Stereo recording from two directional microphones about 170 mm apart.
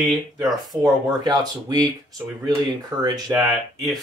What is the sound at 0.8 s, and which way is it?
Speech, 25° right (ahead or behind).